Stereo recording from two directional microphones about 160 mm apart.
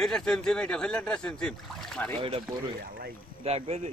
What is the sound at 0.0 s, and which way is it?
Speech, 5° left (ahead or behind).